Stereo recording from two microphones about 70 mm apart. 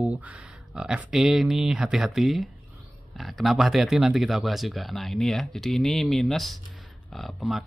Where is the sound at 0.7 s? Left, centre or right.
Centre.